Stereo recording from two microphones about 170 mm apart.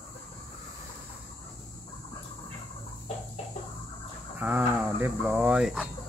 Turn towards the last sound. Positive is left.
turn(degrees=-5)  # may be behind; listen again after turning